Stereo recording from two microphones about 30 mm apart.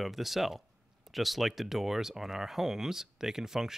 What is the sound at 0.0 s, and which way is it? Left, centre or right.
Speech, centre.